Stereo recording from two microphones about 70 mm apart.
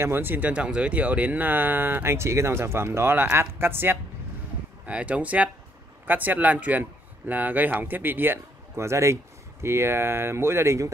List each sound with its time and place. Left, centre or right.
0.0 s speech: right
4.8 s speech: centre; by 10.9 s right